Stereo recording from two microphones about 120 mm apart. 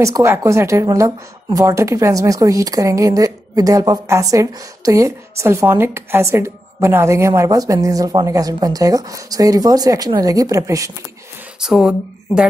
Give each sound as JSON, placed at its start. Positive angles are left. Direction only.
{"t": 0.0, "sound": "speech", "side_deg": -25}
{"t": 11.6, "sound": "speech", "side_deg": -5}